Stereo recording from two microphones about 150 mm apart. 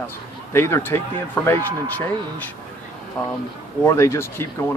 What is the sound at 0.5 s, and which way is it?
Speech, 15° left (ahead or behind).